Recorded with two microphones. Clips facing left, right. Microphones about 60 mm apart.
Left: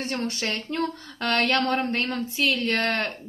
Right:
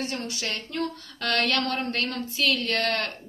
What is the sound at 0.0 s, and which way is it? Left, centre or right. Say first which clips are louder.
Speech: left 3 dB; left.